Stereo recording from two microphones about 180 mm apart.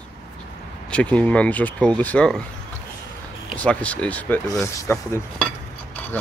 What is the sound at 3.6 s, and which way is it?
Speech, 5° left (ahead or behind).